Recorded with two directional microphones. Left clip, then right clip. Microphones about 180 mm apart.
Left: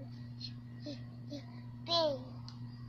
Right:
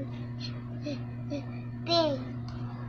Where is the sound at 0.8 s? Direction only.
15° left (ahead or behind).